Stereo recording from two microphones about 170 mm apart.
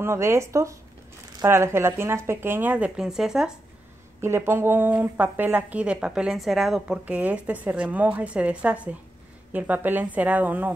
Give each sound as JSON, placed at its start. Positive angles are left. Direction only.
{"t": 0.0, "sound": "speech", "side_deg": -15}
{"t": 4.2, "sound": "speech", "side_deg": -15}